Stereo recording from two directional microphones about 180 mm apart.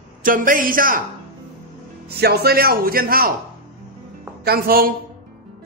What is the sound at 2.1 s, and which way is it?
A man's voice, 60° right (ahead or behind).